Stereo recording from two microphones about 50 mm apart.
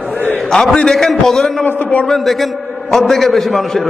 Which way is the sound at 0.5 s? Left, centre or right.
Centre.